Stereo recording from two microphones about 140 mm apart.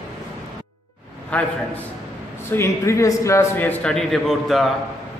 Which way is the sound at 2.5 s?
20° left (ahead or behind).